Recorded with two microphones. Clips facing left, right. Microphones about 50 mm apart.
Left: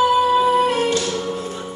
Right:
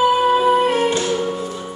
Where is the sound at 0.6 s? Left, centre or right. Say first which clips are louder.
Right 1 dB; centre.